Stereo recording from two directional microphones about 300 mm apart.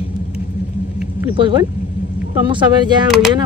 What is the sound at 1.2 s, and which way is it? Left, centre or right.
Speech, centre.